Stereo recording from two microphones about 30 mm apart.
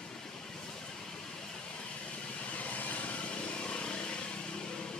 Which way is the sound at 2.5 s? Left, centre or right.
Left.